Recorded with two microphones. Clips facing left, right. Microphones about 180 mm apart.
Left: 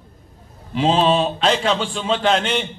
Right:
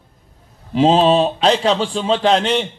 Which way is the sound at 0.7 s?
40° right (ahead or behind).